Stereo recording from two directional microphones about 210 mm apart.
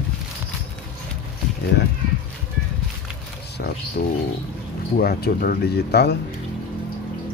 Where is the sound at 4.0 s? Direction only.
45° left (ahead or behind).